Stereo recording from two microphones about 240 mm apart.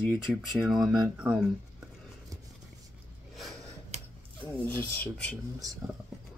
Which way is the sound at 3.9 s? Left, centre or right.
Right.